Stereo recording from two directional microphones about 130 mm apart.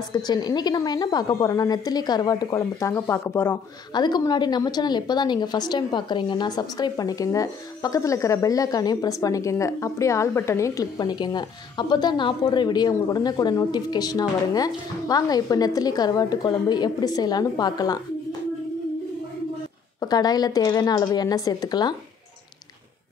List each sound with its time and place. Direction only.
0.1 s a woman's voice: 30° left (ahead or behind)
3.9 s a woman's voice: 35° left (ahead or behind)
20.0 s a woman's voice: 30° left (ahead or behind)